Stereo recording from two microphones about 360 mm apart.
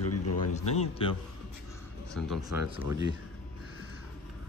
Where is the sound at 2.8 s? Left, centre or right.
Centre.